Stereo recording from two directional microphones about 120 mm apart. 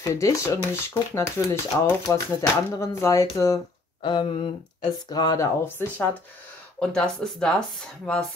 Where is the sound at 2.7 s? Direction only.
25° left (ahead or behind).